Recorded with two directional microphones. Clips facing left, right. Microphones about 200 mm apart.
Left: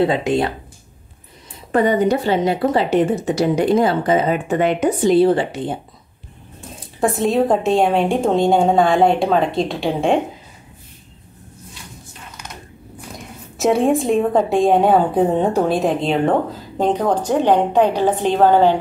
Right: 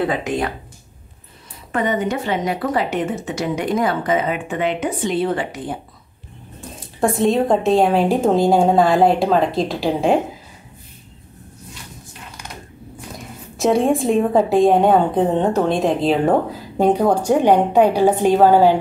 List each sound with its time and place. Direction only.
0.0 s speech: 25° left (ahead or behind)
1.7 s a woman's voice: 35° left (ahead or behind)
6.8 s a woman's voice: centre (ahead or behind)
13.6 s a woman's voice: centre (ahead or behind)